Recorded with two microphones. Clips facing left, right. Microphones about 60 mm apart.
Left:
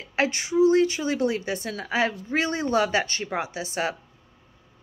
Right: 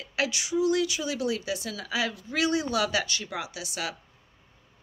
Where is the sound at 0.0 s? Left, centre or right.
Left.